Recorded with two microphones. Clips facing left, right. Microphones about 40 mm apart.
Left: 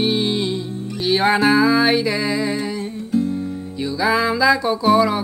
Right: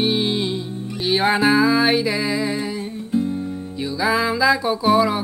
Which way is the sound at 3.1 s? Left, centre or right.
Centre.